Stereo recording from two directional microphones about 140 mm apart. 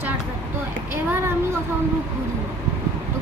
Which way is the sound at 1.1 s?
15° right (ahead or behind).